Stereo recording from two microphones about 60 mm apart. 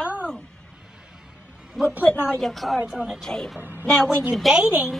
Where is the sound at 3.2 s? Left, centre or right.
Centre.